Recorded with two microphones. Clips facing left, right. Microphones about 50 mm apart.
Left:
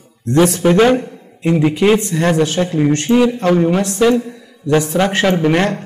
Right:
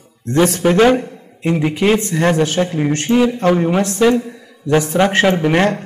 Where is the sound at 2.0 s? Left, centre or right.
Right.